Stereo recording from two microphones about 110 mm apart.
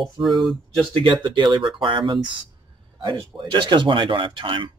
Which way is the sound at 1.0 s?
45° right (ahead or behind).